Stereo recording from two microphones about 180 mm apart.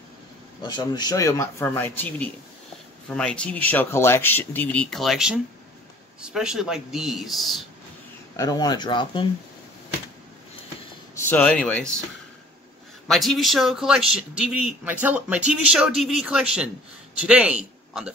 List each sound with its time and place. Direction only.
0.6 s a man's voice: 25° left (ahead or behind); by 7.6 s centre (ahead or behind)
8.4 s speech: 20° left (ahead or behind)
11.1 s speech: 10° left (ahead or behind)
13.1 s a man's voice: centre (ahead or behind)